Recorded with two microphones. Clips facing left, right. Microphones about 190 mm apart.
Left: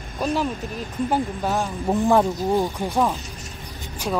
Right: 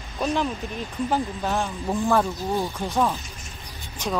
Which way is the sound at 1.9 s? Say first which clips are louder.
Left 4 dB; 20° left (ahead or behind).